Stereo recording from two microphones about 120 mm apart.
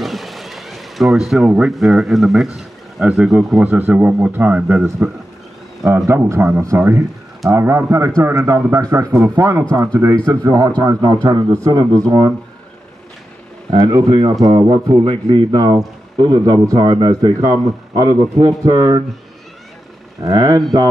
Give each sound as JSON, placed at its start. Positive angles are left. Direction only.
{"t": 0.0, "sound": "speech", "side_deg": 0}
{"t": 3.6, "sound": "a man's voice", "side_deg": -15}
{"t": 5.9, "sound": "a man's voice", "side_deg": -25}
{"t": 13.7, "sound": "a man's voice", "side_deg": -30}
{"t": 20.2, "sound": "a man's voice", "side_deg": -30}